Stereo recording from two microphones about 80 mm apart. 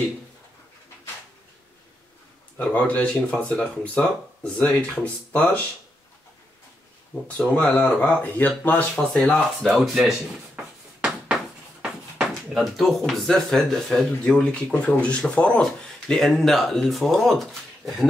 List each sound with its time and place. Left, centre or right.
2.5 s speech: centre
7.2 s speech: centre
10.5 s a sound: centre
11.3 s speech: centre